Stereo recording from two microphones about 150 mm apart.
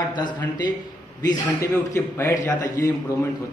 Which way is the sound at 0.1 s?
30° left (ahead or behind).